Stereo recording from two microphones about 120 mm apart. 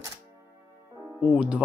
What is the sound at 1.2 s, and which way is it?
Speech, 10° right (ahead or behind).